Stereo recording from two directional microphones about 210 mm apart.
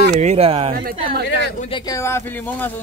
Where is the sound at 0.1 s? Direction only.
35° right (ahead or behind).